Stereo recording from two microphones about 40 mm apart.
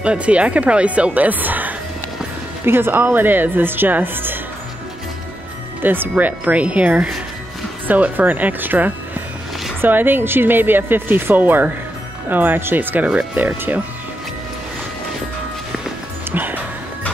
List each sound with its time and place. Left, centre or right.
0.0 s speech: right
2.6 s speech: right
5.8 s speech: right
6.4 s speech: right
12.7 s speech: right
16.3 s music: right